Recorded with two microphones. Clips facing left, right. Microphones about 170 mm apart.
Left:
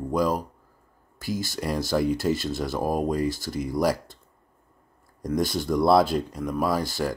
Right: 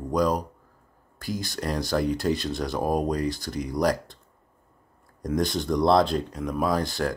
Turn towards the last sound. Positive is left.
turn(degrees=5)  # may be behind; listen again after turning